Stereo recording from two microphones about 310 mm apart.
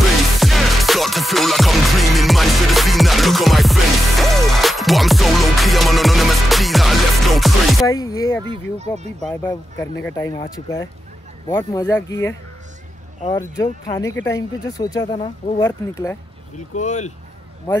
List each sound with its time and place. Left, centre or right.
0.4 s music: centre
7.9 s a sound: centre
9.2 s speech: centre
16.5 s speech: left